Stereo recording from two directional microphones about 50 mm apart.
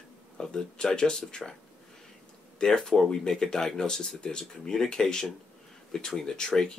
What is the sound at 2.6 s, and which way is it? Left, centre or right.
Speech, centre.